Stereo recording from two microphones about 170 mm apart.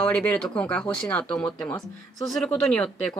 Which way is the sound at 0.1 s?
10° left (ahead or behind).